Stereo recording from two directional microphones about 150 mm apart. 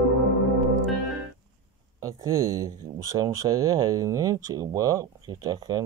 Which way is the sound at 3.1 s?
25° right (ahead or behind).